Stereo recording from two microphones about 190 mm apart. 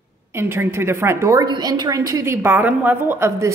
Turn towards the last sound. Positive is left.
turn(degrees=-15)  # may be behind; listen again after turning